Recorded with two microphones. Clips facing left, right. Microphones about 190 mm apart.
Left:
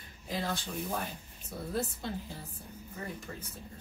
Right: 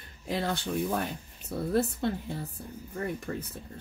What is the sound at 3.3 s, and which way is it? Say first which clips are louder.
Speech: right 9 dB; 60° right (ahead or behind).